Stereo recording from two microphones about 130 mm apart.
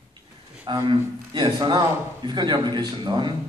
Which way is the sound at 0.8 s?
35° right (ahead or behind).